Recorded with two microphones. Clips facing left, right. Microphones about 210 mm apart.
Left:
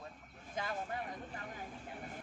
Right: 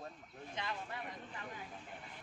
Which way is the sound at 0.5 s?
45° left (ahead or behind).